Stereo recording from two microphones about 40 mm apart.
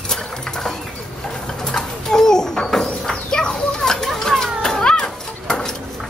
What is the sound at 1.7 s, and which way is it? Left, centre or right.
Pigeon, centre.